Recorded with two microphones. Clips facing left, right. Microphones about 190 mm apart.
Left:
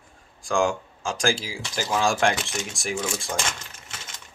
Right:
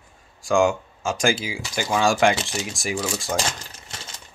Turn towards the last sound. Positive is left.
turn(degrees=-35)  # may be behind; listen again after turning